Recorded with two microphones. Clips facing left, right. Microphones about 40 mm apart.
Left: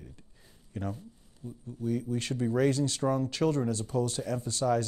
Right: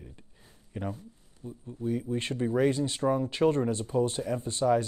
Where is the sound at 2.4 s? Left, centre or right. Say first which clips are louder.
Right 1 dB; centre.